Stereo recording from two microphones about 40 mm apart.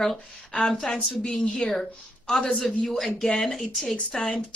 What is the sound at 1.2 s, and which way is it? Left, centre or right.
A man's voice, centre.